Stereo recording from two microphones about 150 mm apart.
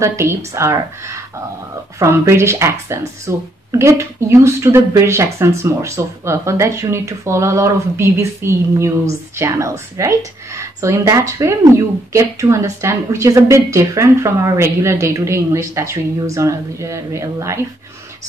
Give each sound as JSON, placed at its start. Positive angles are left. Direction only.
{"t": 0.0, "sound": "speech", "side_deg": -20}